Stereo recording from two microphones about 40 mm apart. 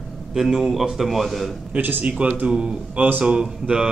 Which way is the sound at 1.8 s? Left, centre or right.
Right.